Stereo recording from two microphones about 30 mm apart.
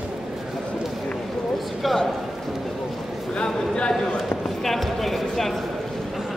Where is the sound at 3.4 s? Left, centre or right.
Left.